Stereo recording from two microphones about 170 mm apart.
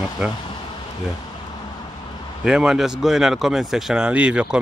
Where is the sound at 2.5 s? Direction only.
5° right (ahead or behind).